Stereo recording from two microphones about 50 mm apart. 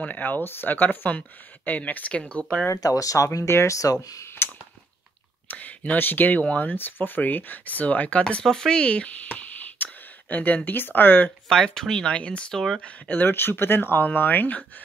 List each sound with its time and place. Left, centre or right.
0.0 s speech: left
2.7 s speech: left
4.4 s a sound: left
5.5 s speech: left
8.5 s speech: centre
8.8 s speech: left
9.3 s a sound: left
10.3 s speech: left
11.4 s speech: centre
13.1 s speech: left